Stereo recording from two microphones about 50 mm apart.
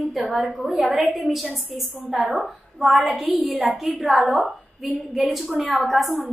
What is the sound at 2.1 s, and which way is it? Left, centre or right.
Speech, centre.